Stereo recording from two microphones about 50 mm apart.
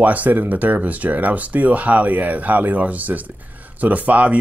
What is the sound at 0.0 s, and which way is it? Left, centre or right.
Speech, right.